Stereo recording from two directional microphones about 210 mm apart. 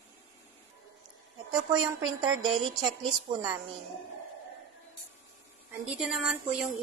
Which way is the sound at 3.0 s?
20° right (ahead or behind).